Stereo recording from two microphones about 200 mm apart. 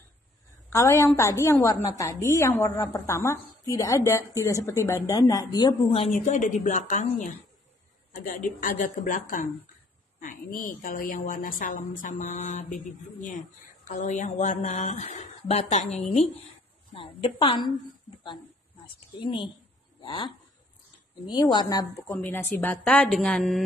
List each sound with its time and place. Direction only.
0.7 s a woman's voice: 15° left (ahead or behind); by 7.3 s 40° left (ahead or behind)
8.5 s speech: 40° left (ahead or behind)
10.2 s speech: 45° left (ahead or behind)
16.9 s a woman's voice: 25° left (ahead or behind)
19.1 s a woman's voice: 25° left (ahead or behind); by 23.6 s 5° left (ahead or behind)